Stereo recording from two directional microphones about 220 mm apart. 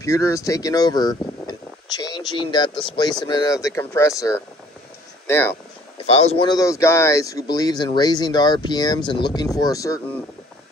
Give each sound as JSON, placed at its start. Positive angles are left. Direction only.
{"t": 0.0, "sound": "speech", "side_deg": 15}
{"t": 6.0, "sound": "speech", "side_deg": 30}